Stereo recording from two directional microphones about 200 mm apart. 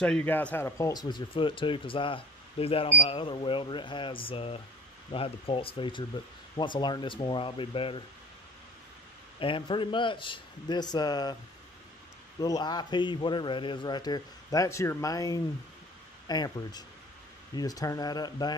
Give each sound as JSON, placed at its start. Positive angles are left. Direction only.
{"t": 0.0, "sound": "speech", "side_deg": 5}
{"t": 9.4, "sound": "speech", "side_deg": 25}
{"t": 12.4, "sound": "speech", "side_deg": 20}